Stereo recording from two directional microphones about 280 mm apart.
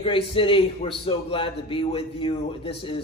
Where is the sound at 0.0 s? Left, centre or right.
Centre.